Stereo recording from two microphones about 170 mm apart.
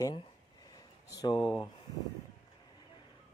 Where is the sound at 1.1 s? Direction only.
25° left (ahead or behind).